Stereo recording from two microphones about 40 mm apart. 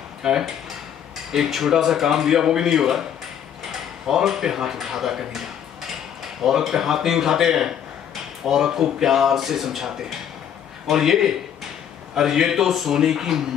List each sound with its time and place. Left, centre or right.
0.2 s speech: centre
4.1 s speech: centre
6.4 s speech: centre